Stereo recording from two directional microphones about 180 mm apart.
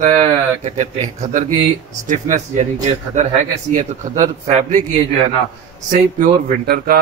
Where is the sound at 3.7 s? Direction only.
45° right (ahead or behind).